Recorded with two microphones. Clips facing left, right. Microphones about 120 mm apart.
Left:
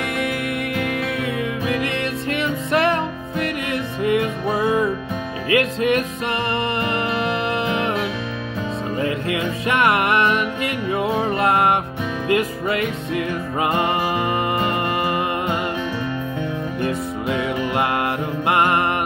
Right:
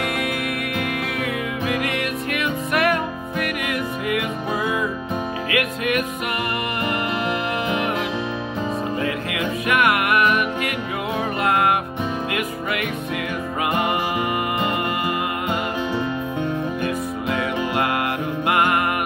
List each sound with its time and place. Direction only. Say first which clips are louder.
2.3 s music: left 3 dB; 30° left (ahead or behind)
5.5 s music: left 6 dB; 30° left (ahead or behind)
9.3 s music: left 1 dB; 25° left (ahead or behind)
18.5 s music: left 2 dB; 25° left (ahead or behind)